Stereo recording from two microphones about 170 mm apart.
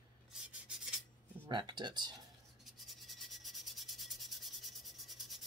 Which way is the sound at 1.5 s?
25° right (ahead or behind).